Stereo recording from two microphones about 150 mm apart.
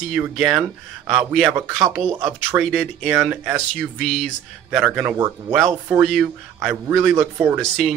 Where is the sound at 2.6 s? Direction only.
Centre (ahead or behind).